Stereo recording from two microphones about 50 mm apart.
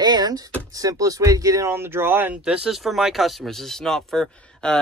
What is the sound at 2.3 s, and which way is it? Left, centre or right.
Speech, centre.